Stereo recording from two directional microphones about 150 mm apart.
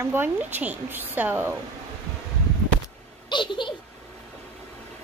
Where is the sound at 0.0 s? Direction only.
15° right (ahead or behind).